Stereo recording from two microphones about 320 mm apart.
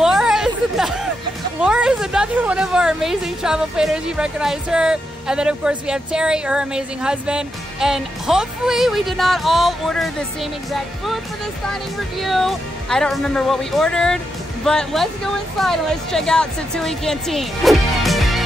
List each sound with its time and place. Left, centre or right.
0.0 s a sound: centre
1.6 s a woman's voice: centre
12.2 s a woman's voice: centre